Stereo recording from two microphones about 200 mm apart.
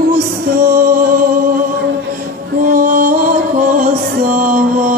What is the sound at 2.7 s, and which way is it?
Music, 45° right (ahead or behind).